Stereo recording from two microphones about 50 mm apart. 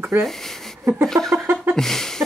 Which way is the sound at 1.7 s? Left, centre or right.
Centre.